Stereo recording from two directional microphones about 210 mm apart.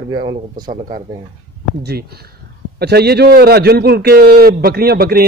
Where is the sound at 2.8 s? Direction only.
50° right (ahead or behind).